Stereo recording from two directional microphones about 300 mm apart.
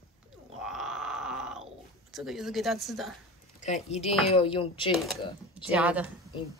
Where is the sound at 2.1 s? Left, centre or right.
Centre.